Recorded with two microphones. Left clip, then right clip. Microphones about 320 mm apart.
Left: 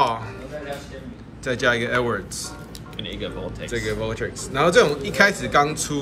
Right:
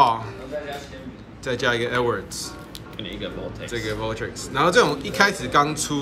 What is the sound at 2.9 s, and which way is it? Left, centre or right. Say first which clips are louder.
Music: left 1 dB; left.